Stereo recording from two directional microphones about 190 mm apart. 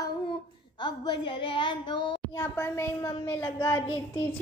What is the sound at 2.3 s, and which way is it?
A woman's voice, 15° left (ahead or behind).